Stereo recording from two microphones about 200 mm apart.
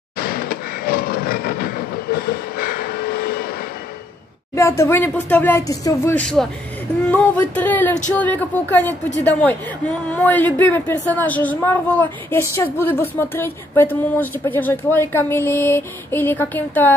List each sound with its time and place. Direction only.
0.2 s train: 50° left (ahead or behind)
4.6 s speech: 15° left (ahead or behind)